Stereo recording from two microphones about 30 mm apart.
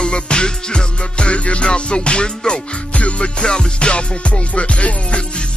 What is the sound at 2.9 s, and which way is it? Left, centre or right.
Music, left.